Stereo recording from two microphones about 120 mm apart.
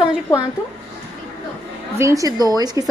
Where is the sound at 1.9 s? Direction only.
25° right (ahead or behind).